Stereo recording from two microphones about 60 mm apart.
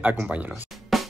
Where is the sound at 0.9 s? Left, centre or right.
Centre.